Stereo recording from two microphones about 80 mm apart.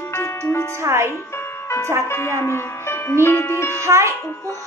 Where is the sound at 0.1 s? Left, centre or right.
Left.